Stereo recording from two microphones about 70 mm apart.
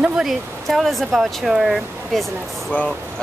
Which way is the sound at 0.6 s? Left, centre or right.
Centre.